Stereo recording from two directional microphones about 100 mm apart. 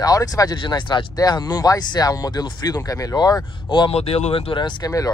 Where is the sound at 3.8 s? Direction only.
85° left; by 4.6 s 70° left (ahead or behind).